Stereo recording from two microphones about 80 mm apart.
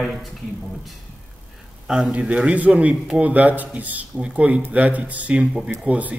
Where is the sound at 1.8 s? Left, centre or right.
Centre.